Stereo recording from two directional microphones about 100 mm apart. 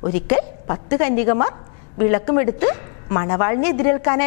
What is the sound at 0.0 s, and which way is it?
A woman's voice, 15° left (ahead or behind).